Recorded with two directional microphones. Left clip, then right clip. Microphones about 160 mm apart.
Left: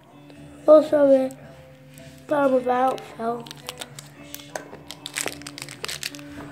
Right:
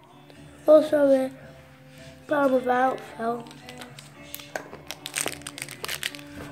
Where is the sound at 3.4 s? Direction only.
65° left (ahead or behind).